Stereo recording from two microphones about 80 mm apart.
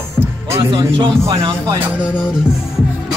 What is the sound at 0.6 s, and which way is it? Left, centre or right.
Speech, right.